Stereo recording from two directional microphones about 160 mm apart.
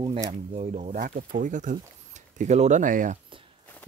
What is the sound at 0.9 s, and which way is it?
Speech, 55° right (ahead or behind).